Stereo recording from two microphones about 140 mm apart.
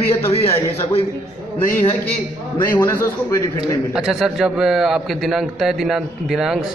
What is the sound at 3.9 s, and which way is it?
A man's voice, 5° right (ahead or behind).